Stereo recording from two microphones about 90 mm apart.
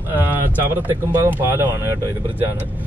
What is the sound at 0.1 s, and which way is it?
Speech, 20° right (ahead or behind).